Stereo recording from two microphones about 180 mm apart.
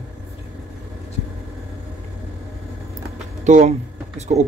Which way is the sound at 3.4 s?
40° right (ahead or behind).